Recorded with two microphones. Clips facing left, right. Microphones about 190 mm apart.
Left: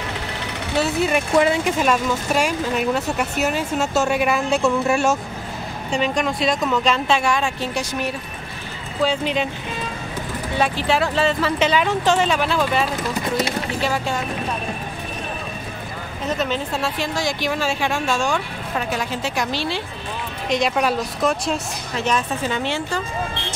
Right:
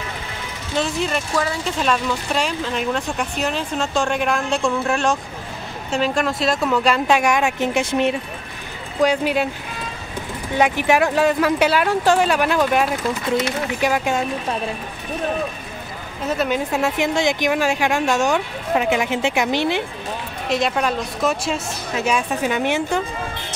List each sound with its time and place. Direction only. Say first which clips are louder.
0.7 s speech: left 2 dB; 5° left (ahead or behind)
1.3 s speech: left 6 dB; 20° left (ahead or behind)
1.8 s speech: left 1 dB; 10° left (ahead or behind); by 8.2 s 25° right (ahead or behind)
9.0 s speech: right 3 dB; 10° right (ahead or behind)
10.6 s speech: right 3 dB; 15° right (ahead or behind)
16.3 s speech: right 3 dB; 10° right (ahead or behind)
20.4 s speech: left 1 dB; centre (ahead or behind)